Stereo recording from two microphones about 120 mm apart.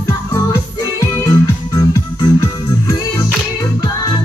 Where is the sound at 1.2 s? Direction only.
30° left (ahead or behind).